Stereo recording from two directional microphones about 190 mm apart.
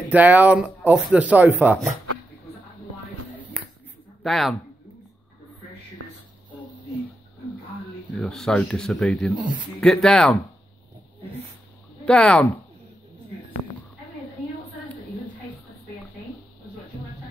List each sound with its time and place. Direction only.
0.1 s speech: 10° right (ahead or behind)
4.2 s speech: centre (ahead or behind)
6.0 s a sound: 90° right
8.1 s speech: 5° left (ahead or behind)
12.0 s speech: 5° left (ahead or behind)
17.0 s a sound: 25° left (ahead or behind)